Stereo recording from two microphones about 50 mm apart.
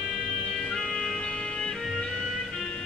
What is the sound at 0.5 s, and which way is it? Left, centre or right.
Music, centre.